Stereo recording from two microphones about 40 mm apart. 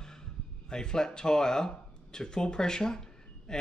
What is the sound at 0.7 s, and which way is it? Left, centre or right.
Speech, centre.